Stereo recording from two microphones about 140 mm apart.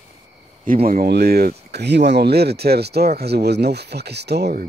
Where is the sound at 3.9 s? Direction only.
90° right.